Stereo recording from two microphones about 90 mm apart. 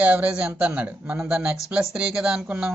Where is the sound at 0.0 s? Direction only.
15° right (ahead or behind).